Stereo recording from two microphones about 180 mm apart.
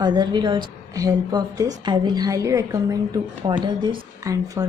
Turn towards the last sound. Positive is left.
turn(degrees=-20)  # may be behind; listen again after turning